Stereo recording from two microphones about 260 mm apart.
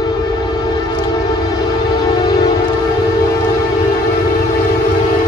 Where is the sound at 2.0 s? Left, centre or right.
Left.